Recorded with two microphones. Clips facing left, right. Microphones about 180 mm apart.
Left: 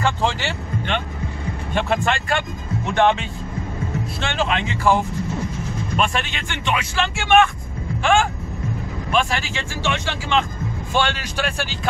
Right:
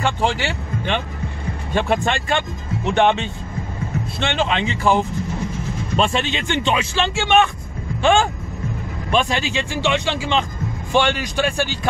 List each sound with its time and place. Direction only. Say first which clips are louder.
0.0 s a man's voice: right 1 dB; 15° right (ahead or behind)